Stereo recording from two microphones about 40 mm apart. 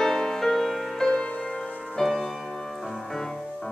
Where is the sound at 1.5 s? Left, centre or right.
Centre.